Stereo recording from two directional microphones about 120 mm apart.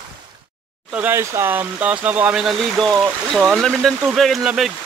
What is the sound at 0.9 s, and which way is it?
Speech, 20° right (ahead or behind).